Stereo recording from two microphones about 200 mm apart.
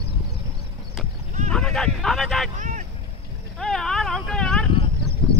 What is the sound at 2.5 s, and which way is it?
Boat, 40° right (ahead or behind).